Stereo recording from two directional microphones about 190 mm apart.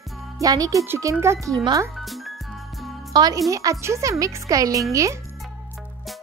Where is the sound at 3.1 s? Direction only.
20° right (ahead or behind).